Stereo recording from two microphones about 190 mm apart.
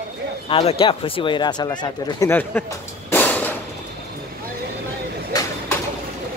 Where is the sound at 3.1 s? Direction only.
10° left (ahead or behind).